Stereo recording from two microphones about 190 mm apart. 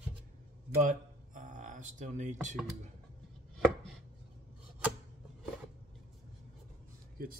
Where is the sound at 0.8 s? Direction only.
45° right (ahead or behind).